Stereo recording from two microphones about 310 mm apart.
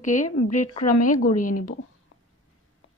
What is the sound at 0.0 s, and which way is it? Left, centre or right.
A woman's voice, left.